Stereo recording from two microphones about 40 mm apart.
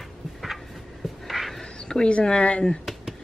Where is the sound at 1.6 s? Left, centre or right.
Centre.